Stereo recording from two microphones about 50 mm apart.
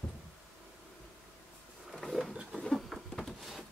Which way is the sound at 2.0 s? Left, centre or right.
Centre.